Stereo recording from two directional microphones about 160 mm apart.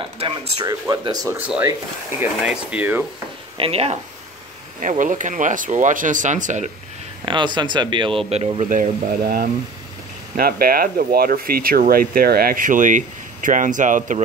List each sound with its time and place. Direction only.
0.0 s a sound: 35° right (ahead or behind)
0.7 s speech: 25° right (ahead or behind)
2.1 s speech: 10° right (ahead or behind)
3.5 s speech: 35° right (ahead or behind)
4.8 s speech: 50° right (ahead or behind)
7.2 s speech: 30° right (ahead or behind); by 14.2 s 55° right (ahead or behind)